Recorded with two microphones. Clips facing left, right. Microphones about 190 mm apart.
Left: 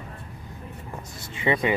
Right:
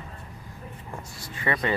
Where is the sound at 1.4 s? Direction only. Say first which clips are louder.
Left 4 dB; 20° left (ahead or behind).